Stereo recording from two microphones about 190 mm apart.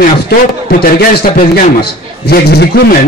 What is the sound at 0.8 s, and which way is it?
Speech, 45° left (ahead or behind).